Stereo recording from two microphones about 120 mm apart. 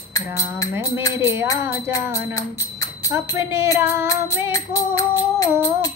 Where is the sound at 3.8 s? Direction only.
20° right (ahead or behind).